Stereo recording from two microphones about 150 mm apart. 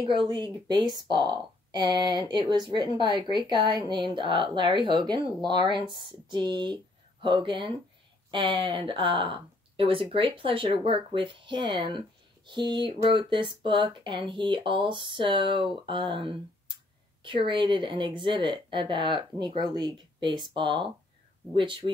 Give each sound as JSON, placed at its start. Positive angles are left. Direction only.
{"t": 0.1, "sound": "a woman's voice", "side_deg": -30}